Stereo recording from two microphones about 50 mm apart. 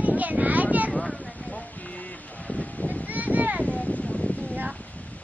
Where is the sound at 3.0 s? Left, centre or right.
Right.